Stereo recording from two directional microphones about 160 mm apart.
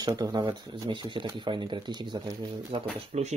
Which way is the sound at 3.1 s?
45° right (ahead or behind).